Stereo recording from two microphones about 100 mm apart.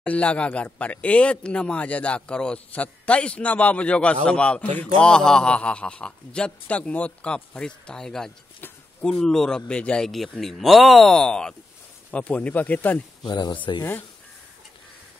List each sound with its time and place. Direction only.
0.0 s speech: 15° left (ahead or behind)
13.2 s speech: 45° left (ahead or behind)